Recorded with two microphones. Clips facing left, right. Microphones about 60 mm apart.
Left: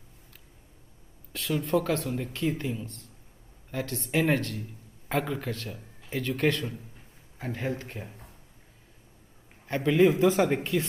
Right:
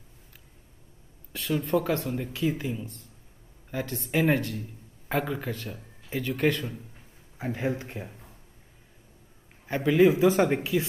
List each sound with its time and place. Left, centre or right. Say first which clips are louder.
1.3 s a man's voice: right 1 dB; centre
9.7 s speech: right 1 dB; centre